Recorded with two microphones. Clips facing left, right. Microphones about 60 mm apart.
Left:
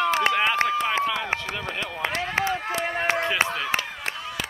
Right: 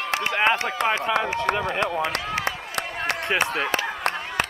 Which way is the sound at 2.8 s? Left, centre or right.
Right.